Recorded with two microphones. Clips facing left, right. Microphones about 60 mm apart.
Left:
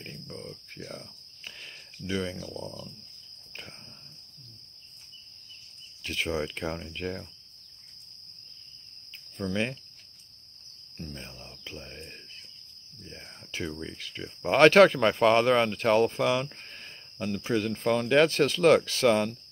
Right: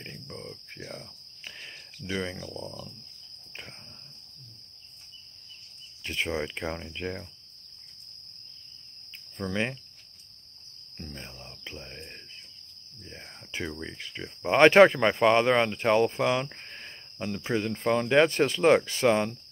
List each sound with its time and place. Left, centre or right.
0.0 s cricket: centre
2.0 s speech: centre
6.0 s speech: right
9.4 s speech: right
11.6 s speech: right
13.0 s speech: right
15.0 s speech: centre